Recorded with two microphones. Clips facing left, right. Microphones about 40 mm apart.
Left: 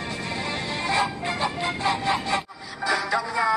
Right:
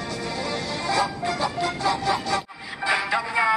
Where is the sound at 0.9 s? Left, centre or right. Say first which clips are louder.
Right 1 dB; left.